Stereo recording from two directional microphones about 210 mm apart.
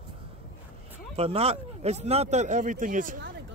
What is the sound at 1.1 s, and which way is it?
Speech, 30° right (ahead or behind).